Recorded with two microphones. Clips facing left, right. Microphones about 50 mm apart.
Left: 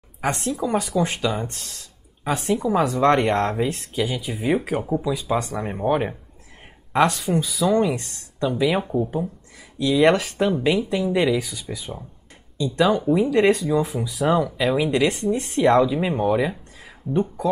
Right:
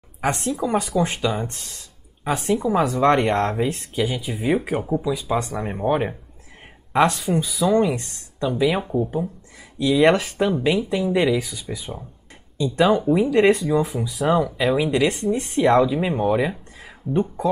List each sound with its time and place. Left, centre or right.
0.2 s speech: centre
7.2 s speech: centre
7.4 s speech: centre
12.6 s speech: right
12.9 s speech: centre